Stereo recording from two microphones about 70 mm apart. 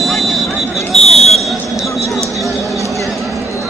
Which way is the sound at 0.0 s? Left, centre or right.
Centre.